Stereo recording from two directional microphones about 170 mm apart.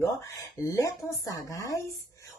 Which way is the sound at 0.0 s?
20° left (ahead or behind).